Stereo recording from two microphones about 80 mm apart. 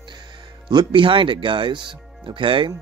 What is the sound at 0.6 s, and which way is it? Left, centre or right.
Speech, right.